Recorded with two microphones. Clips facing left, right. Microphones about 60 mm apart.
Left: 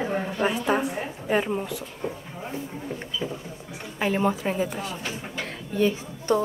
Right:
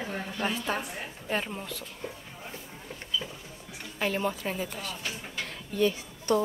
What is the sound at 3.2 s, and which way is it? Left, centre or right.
A woman's voice, centre.